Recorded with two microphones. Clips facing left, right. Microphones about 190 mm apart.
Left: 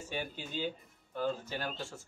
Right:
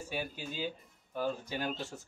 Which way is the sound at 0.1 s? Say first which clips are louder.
Left 1 dB; 10° right (ahead or behind).